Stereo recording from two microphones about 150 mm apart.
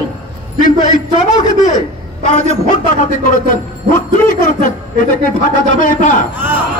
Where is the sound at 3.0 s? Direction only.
60° left (ahead or behind).